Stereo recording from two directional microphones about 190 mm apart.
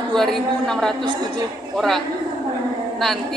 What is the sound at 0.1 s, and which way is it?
Speech, centre (ahead or behind).